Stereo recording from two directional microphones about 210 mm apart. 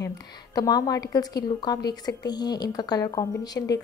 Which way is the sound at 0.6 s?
20° left (ahead or behind).